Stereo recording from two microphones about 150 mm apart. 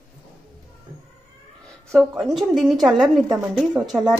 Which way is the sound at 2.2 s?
Centre (ahead or behind).